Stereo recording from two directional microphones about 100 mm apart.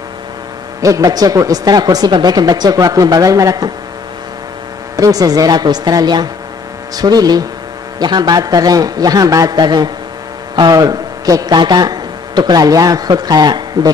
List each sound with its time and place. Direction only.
0.7 s speech: 35° right (ahead or behind)
4.9 s a man's voice: 35° right (ahead or behind)